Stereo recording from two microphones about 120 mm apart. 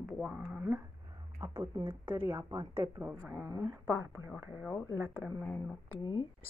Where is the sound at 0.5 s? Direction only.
15° right (ahead or behind).